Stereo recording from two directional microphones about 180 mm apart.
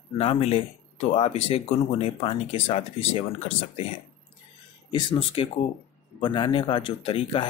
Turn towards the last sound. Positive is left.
turn(degrees=30)  # may be behind; listen again after turning